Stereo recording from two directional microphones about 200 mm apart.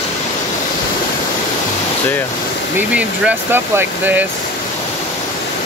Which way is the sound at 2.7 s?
10° right (ahead or behind).